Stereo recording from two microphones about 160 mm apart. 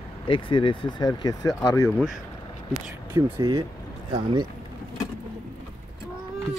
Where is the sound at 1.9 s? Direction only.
Centre (ahead or behind).